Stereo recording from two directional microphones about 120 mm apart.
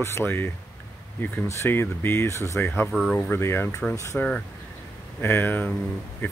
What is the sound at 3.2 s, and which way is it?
Speech, 20° left (ahead or behind).